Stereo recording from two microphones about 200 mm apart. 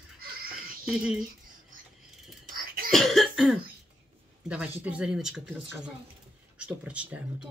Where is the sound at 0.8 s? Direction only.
5° right (ahead or behind).